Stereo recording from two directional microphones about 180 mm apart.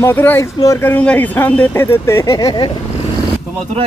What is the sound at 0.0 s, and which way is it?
Speech, 10° left (ahead or behind).